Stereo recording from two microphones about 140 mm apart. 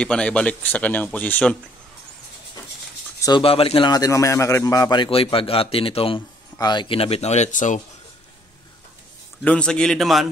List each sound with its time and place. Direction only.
0.0 s speech: 5° left (ahead or behind)
3.2 s a sound: 30° left (ahead or behind)
3.4 s speech: 40° left (ahead or behind)
3.9 s a man's voice: 25° left (ahead or behind); by 7.8 s 60° left (ahead or behind)
9.4 s a man's voice: 10° left (ahead or behind)